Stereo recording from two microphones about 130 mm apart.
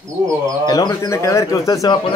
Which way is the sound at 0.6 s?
30° left (ahead or behind).